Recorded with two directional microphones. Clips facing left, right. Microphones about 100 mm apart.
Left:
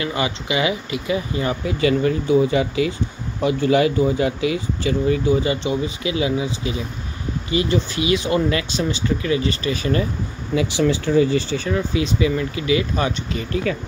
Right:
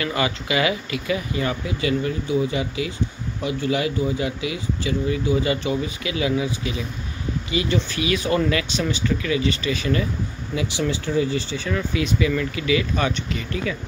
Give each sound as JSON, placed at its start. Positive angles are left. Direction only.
{"t": 0.0, "sound": "speech", "side_deg": 25}
{"t": 1.8, "sound": "speech", "side_deg": 60}
{"t": 10.5, "sound": "speech", "side_deg": 80}
{"t": 11.7, "sound": "speech", "side_deg": 30}